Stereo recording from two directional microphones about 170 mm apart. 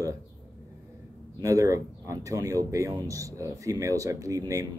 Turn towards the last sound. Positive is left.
turn(degrees=-20)  # may be behind; listen again after turning